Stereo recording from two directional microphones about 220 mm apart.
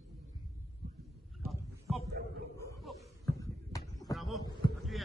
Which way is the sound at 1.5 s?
Centre (ahead or behind).